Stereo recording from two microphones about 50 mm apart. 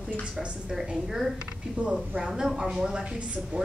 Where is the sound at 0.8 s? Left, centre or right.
Centre.